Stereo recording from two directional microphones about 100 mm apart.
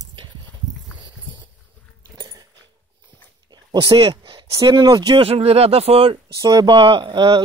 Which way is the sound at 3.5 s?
45° right (ahead or behind).